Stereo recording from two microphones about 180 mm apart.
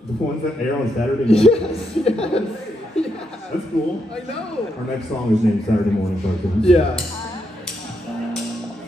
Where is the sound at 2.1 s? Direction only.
35° left (ahead or behind).